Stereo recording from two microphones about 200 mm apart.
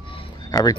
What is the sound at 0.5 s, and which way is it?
Speech, 20° left (ahead or behind).